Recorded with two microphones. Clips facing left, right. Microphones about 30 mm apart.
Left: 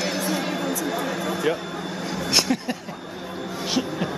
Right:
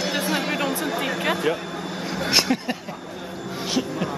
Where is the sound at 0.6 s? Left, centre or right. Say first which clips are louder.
Right 1 dB; right.